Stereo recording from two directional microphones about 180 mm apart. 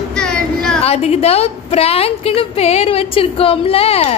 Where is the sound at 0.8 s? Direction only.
35° left (ahead or behind).